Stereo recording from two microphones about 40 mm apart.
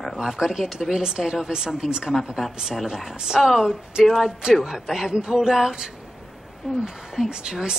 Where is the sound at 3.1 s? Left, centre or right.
Centre.